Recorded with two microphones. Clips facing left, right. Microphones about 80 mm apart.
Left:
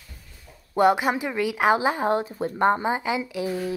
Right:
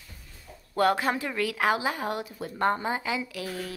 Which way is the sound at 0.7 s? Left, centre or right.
Centre.